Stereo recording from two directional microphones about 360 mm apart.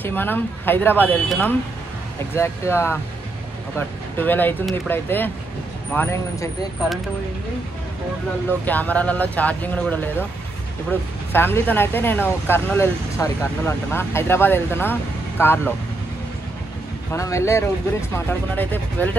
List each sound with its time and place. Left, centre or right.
0.0 s speech: centre
4.2 s speech: centre
8.6 s speech: centre
17.1 s speech: centre